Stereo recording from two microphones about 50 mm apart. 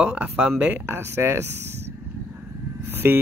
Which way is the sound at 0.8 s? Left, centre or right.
Right.